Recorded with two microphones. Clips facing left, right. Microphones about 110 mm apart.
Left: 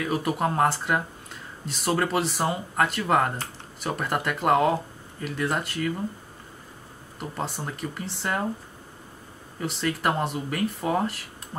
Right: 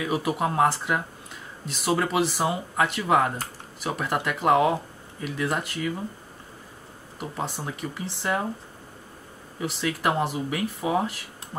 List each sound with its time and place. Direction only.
0.0 s speech: 5° right (ahead or behind)
7.2 s speech: centre (ahead or behind)
9.6 s speech: centre (ahead or behind)